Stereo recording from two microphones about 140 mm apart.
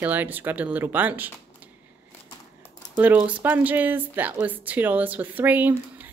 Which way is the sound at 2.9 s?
10° right (ahead or behind).